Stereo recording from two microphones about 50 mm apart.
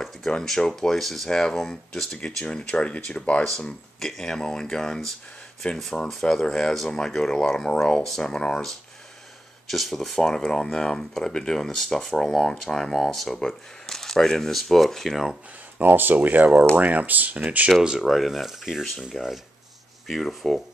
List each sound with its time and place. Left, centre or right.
0.3 s speech: centre
4.0 s speech: centre
5.6 s speech: left
6.0 s speech: centre
9.7 s speech: centre
15.8 s speech: right
18.0 s speech: centre
20.1 s speech: centre